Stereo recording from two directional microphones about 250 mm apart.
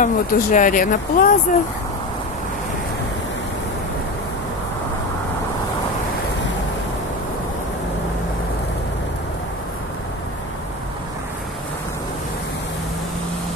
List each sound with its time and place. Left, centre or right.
0.0 s speech: left